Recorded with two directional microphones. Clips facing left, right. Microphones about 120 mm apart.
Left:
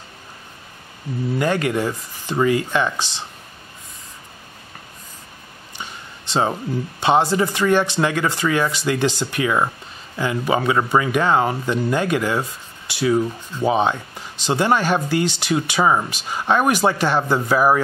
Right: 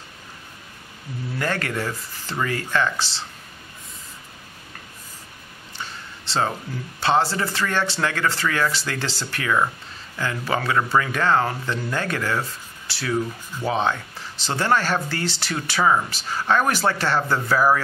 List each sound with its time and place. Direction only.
1.4 s speech: 15° left (ahead or behind)
5.8 s a sound: 15° left (ahead or behind)
7.0 s speech: 15° left (ahead or behind)